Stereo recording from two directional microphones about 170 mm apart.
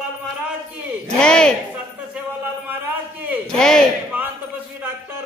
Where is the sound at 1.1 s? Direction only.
5° left (ahead or behind).